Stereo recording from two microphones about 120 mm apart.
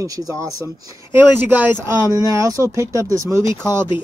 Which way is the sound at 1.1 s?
15° right (ahead or behind).